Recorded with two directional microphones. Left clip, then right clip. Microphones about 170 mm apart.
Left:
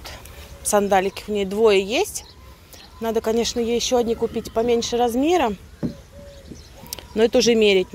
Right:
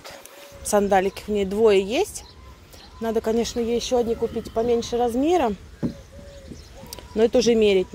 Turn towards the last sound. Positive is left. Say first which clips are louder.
# left 2 dB
turn(degrees=-5)  # may be behind; listen again after turning